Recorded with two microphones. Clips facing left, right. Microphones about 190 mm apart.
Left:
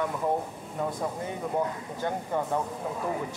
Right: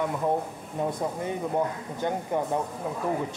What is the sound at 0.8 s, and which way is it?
Speech, 20° right (ahead or behind).